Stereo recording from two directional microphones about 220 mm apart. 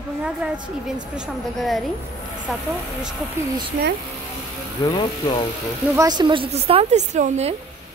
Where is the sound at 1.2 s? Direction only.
Centre (ahead or behind).